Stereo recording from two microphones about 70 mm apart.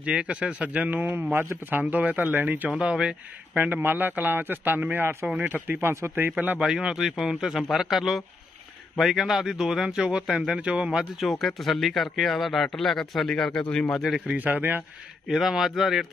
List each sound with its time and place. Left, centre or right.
0.0 s a man's voice: centre
2.8 s speech: centre
3.5 s a man's voice: right
6.6 s a man's voice: centre
11.1 s a man's voice: centre
13.9 s a man's voice: centre
14.2 s a man's voice: right
15.2 s a man's voice: centre